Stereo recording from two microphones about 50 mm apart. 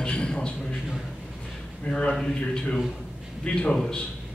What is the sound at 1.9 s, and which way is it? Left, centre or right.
Speech, centre.